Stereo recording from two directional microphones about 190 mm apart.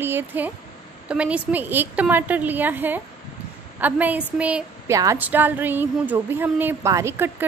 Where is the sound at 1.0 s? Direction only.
5° right (ahead or behind).